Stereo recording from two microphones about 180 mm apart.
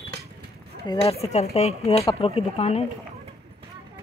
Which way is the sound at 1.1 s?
35° left (ahead or behind).